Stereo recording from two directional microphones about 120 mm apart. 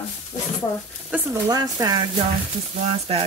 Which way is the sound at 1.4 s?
30° right (ahead or behind).